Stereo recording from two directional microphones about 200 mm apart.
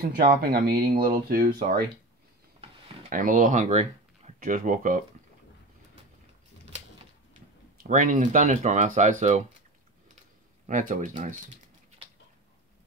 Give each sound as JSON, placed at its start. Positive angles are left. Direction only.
{"t": 0.0, "sound": "speech", "side_deg": -50}
{"t": 3.1, "sound": "speech", "side_deg": -40}
{"t": 7.7, "sound": "speech", "side_deg": -40}
{"t": 10.7, "sound": "speech", "side_deg": -40}